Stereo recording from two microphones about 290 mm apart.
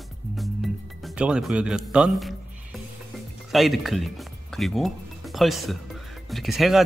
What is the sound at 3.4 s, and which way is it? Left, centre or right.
Speech, centre.